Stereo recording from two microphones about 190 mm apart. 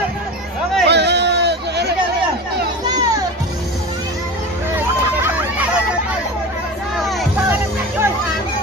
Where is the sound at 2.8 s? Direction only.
20° right (ahead or behind).